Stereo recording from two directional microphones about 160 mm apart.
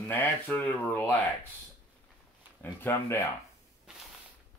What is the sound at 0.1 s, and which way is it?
Speech, 10° left (ahead or behind).